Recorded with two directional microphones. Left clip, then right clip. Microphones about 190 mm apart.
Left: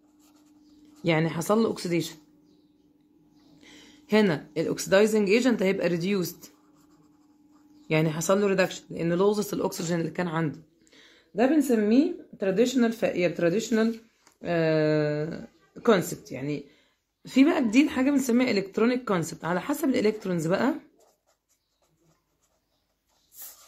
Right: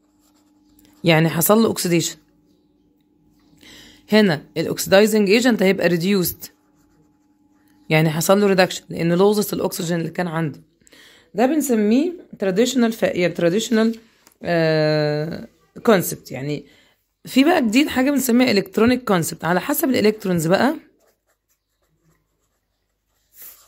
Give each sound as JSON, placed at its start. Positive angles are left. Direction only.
{"t": 1.0, "sound": "speech", "side_deg": -50}
{"t": 3.6, "sound": "speech", "side_deg": -45}
{"t": 7.9, "sound": "speech", "side_deg": -50}